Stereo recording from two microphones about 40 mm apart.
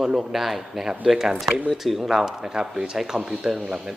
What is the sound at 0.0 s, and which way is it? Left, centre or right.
Speech, centre.